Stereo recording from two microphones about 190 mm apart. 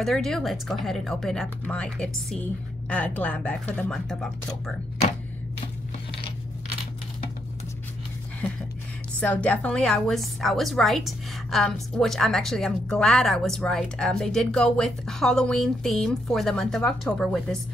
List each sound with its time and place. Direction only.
0.0 s a woman's voice: centre (ahead or behind)
9.2 s a woman's voice: 5° left (ahead or behind)